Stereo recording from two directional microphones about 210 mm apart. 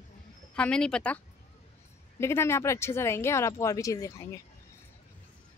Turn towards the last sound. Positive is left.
turn(degrees=15)  # may be behind; listen again after turning